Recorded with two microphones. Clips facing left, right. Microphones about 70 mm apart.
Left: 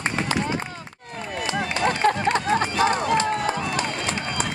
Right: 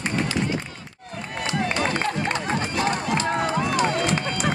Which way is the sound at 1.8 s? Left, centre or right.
Left.